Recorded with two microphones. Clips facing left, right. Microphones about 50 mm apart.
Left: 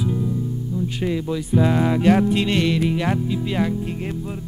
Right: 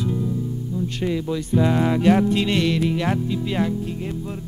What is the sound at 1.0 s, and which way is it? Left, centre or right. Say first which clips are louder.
Speech: even; centre.